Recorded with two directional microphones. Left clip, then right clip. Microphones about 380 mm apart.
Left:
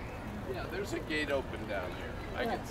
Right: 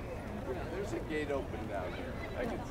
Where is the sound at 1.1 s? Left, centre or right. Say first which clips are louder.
Left 4 dB; centre.